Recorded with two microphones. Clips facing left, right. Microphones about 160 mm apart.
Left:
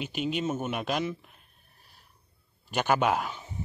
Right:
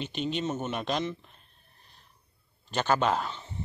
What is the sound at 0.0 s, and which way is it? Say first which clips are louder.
Speech: left 1 dB; 5° left (ahead or behind).